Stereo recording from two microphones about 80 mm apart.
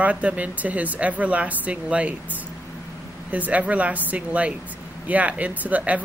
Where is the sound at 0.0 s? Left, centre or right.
Centre.